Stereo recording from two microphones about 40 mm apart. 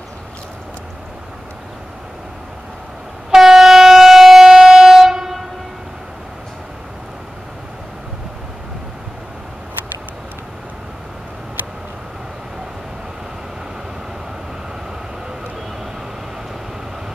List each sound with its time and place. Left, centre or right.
3.3 s train: centre